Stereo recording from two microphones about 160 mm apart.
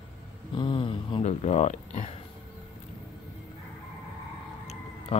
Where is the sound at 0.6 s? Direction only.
30° left (ahead or behind).